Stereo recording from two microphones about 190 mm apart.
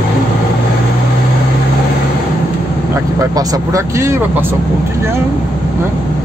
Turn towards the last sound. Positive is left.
turn(degrees=-15)  # may be behind; listen again after turning